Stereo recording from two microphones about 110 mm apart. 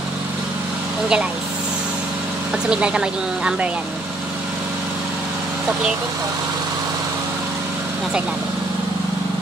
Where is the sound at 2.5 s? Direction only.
10° right (ahead or behind).